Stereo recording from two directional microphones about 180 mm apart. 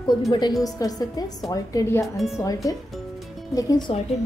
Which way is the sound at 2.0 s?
Centre (ahead or behind).